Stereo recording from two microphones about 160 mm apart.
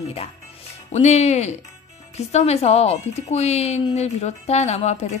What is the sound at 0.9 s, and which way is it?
A woman's voice, 45° left (ahead or behind).